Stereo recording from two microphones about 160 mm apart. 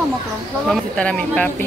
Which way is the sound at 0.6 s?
5° left (ahead or behind).